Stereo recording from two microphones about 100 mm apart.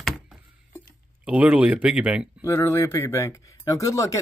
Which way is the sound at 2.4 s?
30° left (ahead or behind).